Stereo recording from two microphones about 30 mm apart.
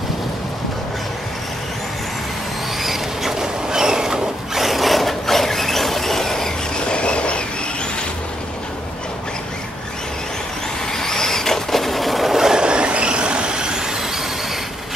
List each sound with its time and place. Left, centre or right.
2.8 s vehicle: centre
3.3 s vehicle: right
4.6 s a sound: centre
6.9 s a sound: left
11.0 s vehicle: centre
12.5 s vehicle: right